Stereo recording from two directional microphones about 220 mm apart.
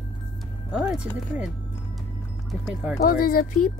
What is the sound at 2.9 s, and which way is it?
Speech, 40° left (ahead or behind).